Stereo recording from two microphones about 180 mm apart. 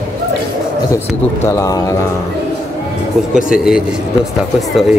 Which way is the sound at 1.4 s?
20° left (ahead or behind).